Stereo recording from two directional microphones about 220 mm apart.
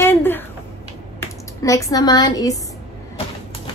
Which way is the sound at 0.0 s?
10° left (ahead or behind).